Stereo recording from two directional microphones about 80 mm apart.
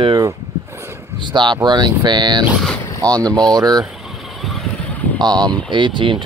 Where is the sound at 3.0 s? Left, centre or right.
Right.